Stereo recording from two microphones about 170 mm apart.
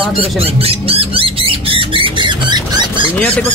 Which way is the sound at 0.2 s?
35° right (ahead or behind).